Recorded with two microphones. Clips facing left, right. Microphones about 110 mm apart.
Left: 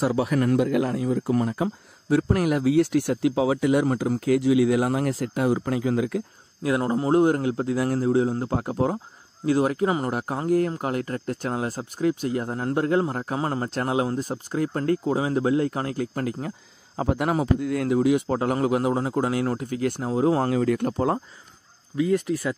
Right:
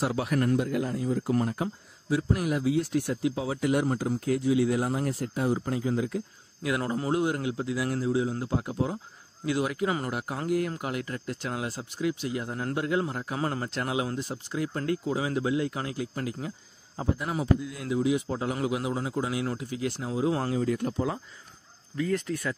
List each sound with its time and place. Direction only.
0.5 s speech: 90° left
2.0 s speech: 60° left (ahead or behind); by 6.2 s 90° left
6.6 s speech: 35° left (ahead or behind)
7.1 s a man's voice: 40° left (ahead or behind)
9.5 s a man's voice: 40° left (ahead or behind)
16.9 s a man's voice: 85° left; by 20.5 s 45° left (ahead or behind)
20.5 s speech: 65° left (ahead or behind)
21.9 s speech: 15° left (ahead or behind)